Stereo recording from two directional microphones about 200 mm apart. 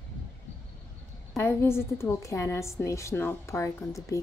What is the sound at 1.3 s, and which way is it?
A woman's voice, 10° left (ahead or behind).